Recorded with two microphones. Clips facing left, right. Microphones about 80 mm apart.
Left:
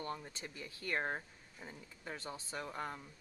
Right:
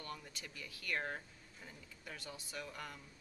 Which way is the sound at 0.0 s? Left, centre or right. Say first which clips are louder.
Left 5 dB; left.